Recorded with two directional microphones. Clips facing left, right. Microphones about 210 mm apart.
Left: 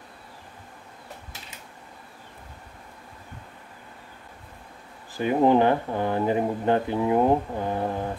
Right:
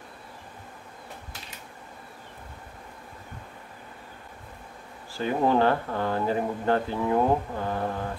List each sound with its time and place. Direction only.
5.1 s speech: 20° left (ahead or behind)